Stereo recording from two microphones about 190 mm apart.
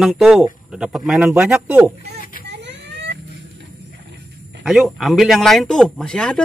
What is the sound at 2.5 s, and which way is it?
Vehicle, 65° right (ahead or behind).